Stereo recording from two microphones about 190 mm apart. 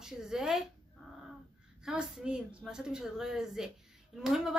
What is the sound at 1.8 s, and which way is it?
A woman's voice, 5° right (ahead or behind).